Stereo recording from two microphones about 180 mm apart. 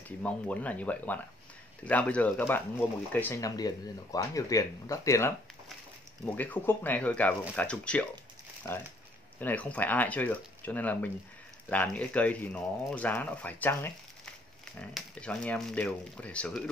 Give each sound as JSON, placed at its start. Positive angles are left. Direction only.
{"t": 0.2, "sound": "speech", "side_deg": 10}
{"t": 6.3, "sound": "speech", "side_deg": 10}
{"t": 8.6, "sound": "speech", "side_deg": 15}